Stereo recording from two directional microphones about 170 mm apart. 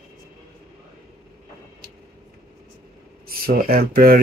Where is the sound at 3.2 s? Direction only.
60° right (ahead or behind).